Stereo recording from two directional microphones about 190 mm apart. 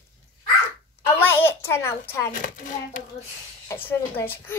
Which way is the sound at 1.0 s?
10° left (ahead or behind).